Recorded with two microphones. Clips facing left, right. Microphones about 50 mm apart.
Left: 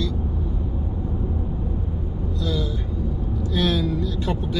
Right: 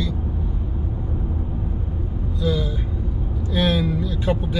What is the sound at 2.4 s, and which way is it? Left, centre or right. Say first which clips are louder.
Speech: right 4 dB; centre.